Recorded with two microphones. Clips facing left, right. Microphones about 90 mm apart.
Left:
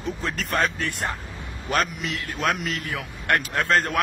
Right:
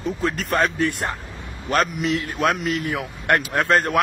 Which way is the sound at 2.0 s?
25° right (ahead or behind).